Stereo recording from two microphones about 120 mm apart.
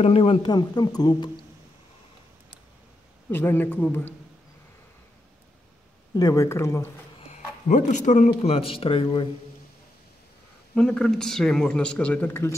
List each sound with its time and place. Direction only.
0.0 s speech: 50° left (ahead or behind); by 1.4 s 35° left (ahead or behind)
3.3 s a man's voice: 15° left (ahead or behind)
6.1 s speech: 30° left (ahead or behind)
7.2 s speech: 85° left
8.3 s speech: 50° left (ahead or behind)
10.7 s a man's voice: 5° left (ahead or behind)